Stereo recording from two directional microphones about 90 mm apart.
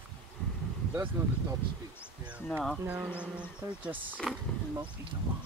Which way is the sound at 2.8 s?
20° right (ahead or behind).